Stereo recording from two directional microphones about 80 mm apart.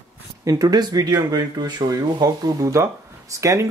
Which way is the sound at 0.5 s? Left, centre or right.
Right.